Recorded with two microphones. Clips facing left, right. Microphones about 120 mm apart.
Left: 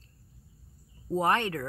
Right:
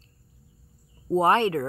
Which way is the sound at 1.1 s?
25° right (ahead or behind).